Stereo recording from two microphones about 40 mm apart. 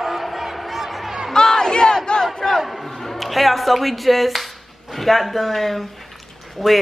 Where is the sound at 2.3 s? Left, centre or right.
Centre.